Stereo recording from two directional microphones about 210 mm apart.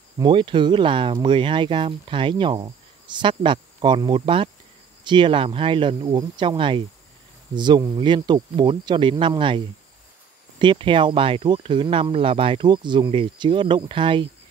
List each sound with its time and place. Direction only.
0.2 s speech: 25° right (ahead or behind)
10.6 s speech: 25° right (ahead or behind)